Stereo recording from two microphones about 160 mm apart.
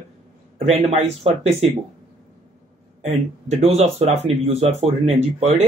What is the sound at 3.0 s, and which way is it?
Speech, 45° right (ahead or behind).